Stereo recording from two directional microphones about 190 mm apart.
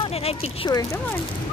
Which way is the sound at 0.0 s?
30° left (ahead or behind).